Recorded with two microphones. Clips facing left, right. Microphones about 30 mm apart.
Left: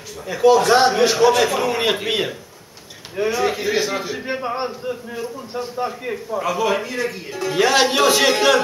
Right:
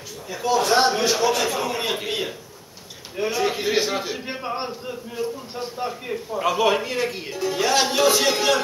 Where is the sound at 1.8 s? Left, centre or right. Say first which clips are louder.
Left 5 dB; left.